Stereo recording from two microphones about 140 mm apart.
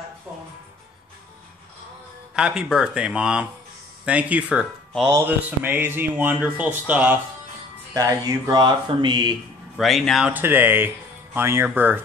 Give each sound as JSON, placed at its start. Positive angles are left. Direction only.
{"t": 2.3, "sound": "speech", "side_deg": -5}
{"t": 7.9, "sound": "speech", "side_deg": -25}
{"t": 9.8, "sound": "speech", "side_deg": 0}
{"t": 10.3, "sound": "speech", "side_deg": -15}